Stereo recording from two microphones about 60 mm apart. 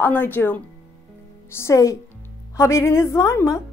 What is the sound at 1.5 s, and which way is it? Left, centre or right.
A woman's voice, left.